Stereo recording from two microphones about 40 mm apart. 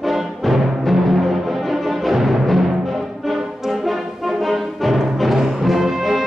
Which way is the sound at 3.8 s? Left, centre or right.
Centre.